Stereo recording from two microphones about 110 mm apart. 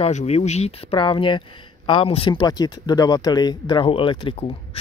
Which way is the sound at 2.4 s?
40° left (ahead or behind).